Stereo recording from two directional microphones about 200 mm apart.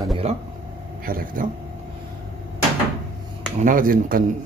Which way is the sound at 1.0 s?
45° right (ahead or behind).